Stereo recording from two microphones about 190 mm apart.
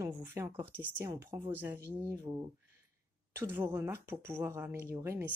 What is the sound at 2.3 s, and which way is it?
Speech, 25° right (ahead or behind).